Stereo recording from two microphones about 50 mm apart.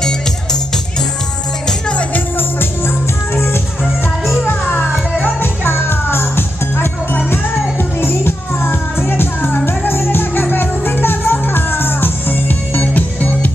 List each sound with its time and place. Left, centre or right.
1.7 s music: left
2.1 s music: left
4.5 s music: left
5.2 s music: left